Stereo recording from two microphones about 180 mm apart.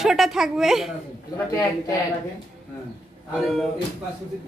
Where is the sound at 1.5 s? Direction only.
15° left (ahead or behind).